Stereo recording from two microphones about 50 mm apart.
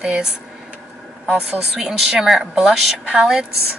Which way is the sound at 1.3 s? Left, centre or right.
Centre.